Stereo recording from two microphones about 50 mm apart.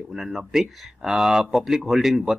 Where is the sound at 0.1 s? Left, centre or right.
Centre.